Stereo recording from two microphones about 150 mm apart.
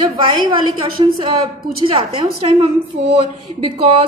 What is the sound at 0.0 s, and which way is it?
A woman's voice, 30° right (ahead or behind).